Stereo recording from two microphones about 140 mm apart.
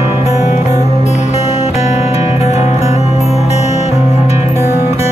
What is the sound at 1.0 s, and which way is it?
Music, 50° left (ahead or behind).